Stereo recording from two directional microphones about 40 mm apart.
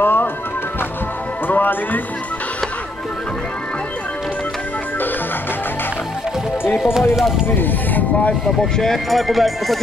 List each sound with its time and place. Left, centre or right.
0.0 s music: left
1.5 s music: left
6.8 s speech: centre
7.4 s speech: left
8.5 s speech: centre
8.9 s speech: centre